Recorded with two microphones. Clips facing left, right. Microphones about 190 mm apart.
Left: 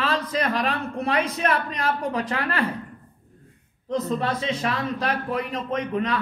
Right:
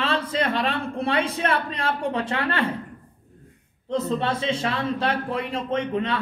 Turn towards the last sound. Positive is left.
turn(degrees=-30)  # may be behind; listen again after turning